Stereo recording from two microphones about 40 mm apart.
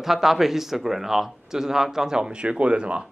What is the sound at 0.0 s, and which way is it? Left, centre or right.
A man's voice, centre.